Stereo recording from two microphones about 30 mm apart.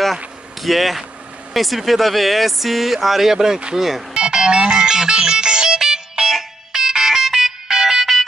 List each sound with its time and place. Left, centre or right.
0.0 s a sound: centre
1.5 s speech: centre
4.1 s music: right